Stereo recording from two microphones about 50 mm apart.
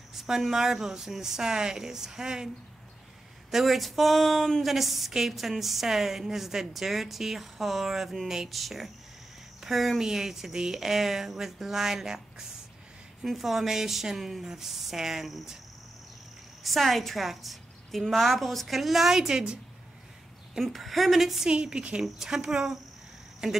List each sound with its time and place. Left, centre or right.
0.5 s speech: centre
3.5 s speech: centre
16.6 s speech: centre
20.5 s speech: centre
21.5 s a woman's voice: centre